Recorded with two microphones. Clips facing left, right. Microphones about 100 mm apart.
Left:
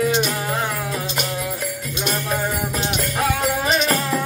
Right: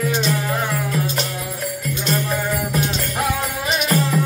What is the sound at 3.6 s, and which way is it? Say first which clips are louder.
Music: left 2 dB; 35° left (ahead or behind).